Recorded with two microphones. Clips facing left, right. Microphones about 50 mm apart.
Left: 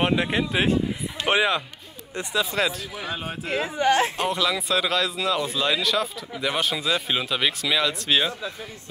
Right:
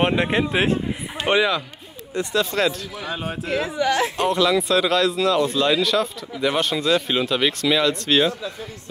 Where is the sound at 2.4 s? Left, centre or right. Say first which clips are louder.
Right 3 dB; centre.